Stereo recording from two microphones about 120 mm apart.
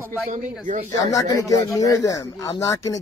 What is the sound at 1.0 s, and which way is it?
Speech, 30° left (ahead or behind).